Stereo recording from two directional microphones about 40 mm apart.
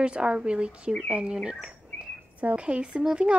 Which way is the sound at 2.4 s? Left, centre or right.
Right.